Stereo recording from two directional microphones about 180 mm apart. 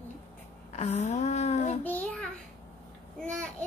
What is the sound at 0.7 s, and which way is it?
A woman's voice, 40° left (ahead or behind).